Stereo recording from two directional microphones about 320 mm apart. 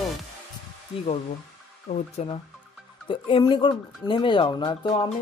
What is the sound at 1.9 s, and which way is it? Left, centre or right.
Speech, centre.